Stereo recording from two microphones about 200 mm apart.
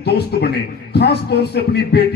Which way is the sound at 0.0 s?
55° left (ahead or behind).